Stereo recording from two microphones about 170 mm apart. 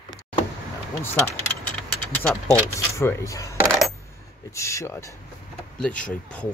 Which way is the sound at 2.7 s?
15° left (ahead or behind).